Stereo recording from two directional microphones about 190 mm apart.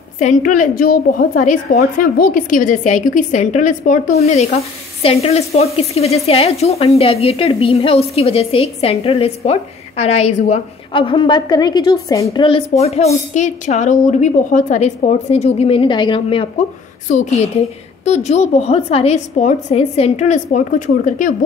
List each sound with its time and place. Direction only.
0.2 s a woman's voice: 45° left (ahead or behind)
4.2 s a woman's voice: 35° left (ahead or behind)